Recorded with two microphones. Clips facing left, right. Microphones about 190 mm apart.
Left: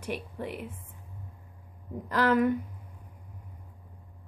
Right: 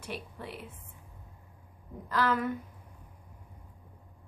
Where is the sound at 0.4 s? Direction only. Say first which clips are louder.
Left 6 dB; 55° left (ahead or behind).